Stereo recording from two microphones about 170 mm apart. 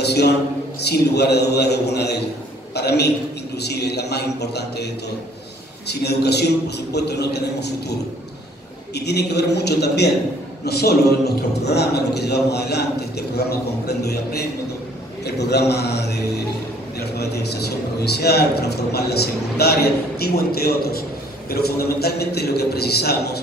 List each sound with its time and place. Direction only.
0.0 s a man's voice: 75° left (ahead or behind)
5.9 s a man's voice: 75° left (ahead or behind)
8.9 s a man's voice: 75° left (ahead or behind)